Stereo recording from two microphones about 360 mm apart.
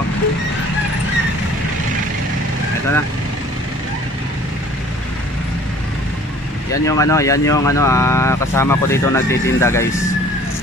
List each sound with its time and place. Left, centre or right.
6.7 s speech: centre